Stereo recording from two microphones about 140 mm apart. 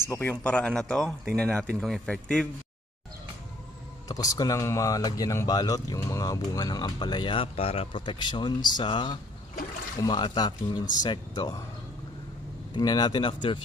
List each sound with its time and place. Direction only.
0.1 s speech: 15° left (ahead or behind)
4.1 s speech: 25° left (ahead or behind)
12.7 s speech: 30° left (ahead or behind)